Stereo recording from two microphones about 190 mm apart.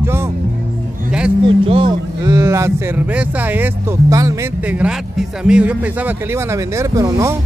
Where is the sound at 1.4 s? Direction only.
30° right (ahead or behind).